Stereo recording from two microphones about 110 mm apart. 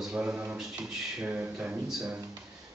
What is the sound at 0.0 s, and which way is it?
A man's voice, 5° right (ahead or behind).